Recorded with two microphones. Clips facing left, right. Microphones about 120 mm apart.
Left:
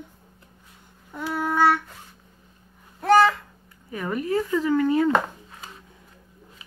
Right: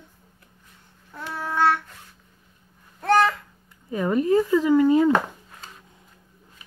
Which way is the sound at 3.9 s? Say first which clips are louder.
Right 5 dB; 25° right (ahead or behind).